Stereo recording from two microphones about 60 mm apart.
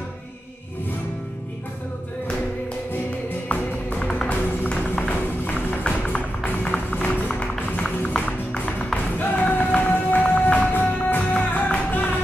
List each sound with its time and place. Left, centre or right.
3.9 s music: centre
9.2 s music: left